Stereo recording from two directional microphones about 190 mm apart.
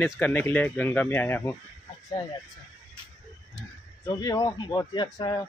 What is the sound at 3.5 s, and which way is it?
Speech, 20° left (ahead or behind).